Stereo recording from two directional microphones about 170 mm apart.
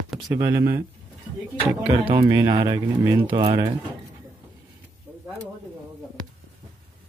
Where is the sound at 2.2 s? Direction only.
15° right (ahead or behind).